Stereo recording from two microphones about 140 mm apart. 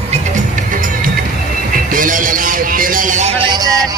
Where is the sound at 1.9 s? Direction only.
75° right (ahead or behind); by 3.5 s 50° right (ahead or behind).